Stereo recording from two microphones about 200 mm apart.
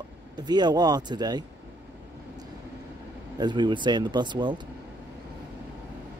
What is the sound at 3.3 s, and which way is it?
Speech, 20° right (ahead or behind).